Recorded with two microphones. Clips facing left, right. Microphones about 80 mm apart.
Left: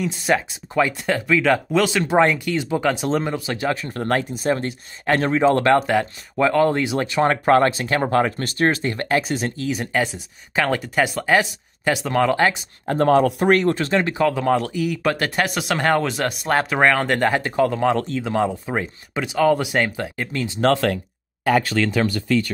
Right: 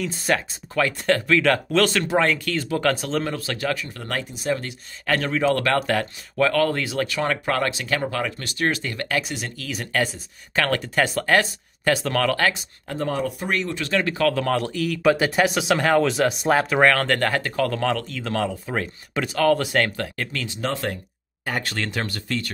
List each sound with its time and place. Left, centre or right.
0.0 s speech: centre
2.1 s speech: centre
3.7 s speech: left
5.9 s speech: centre
12.8 s speech: left
13.8 s speech: left
15.0 s speech: centre
17.9 s speech: left
20.6 s speech: left